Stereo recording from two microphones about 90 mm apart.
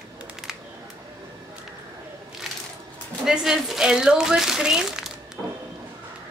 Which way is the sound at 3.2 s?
5° right (ahead or behind).